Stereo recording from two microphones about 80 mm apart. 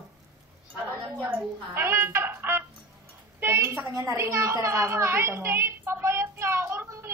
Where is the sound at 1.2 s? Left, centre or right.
Right.